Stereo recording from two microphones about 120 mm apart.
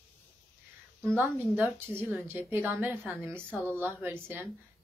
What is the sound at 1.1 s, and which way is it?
A woman's voice, 15° right (ahead or behind).